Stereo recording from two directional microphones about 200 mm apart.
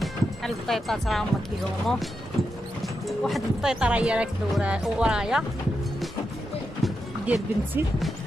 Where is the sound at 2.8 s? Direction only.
Centre (ahead or behind).